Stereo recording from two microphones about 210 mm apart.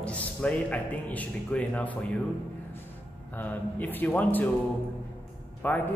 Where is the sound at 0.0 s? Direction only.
5° left (ahead or behind).